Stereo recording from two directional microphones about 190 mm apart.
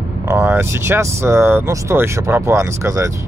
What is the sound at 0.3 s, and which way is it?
Speech, 10° right (ahead or behind).